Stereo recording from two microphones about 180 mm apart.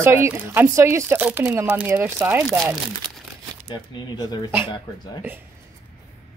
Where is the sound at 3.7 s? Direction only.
20° left (ahead or behind).